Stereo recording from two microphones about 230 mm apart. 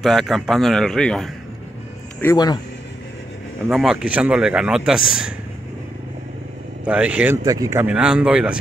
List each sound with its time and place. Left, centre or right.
0.0 s speech: centre
2.1 s a man's voice: centre
3.6 s speech: centre
6.9 s speech: centre